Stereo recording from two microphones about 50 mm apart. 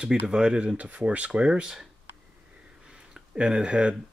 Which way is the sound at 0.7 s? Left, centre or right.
Right.